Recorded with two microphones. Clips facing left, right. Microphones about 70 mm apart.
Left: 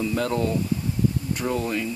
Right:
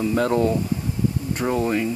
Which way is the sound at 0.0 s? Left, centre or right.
Right.